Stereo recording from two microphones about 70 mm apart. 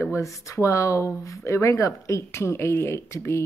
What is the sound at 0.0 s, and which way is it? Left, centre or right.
Speech, left.